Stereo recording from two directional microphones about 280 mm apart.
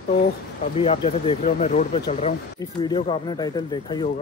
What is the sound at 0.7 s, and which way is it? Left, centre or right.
Speech, left.